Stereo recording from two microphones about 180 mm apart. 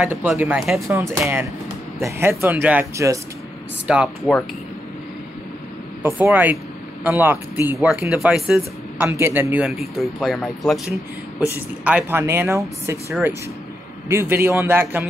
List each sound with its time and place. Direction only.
0.0 s speech: 10° right (ahead or behind)
0.7 s speech: 15° right (ahead or behind)
3.8 s speech: 5° right (ahead or behind)
6.0 s speech: 10° right (ahead or behind)
11.3 s speech: 10° right (ahead or behind)
14.0 s speech: 15° right (ahead or behind)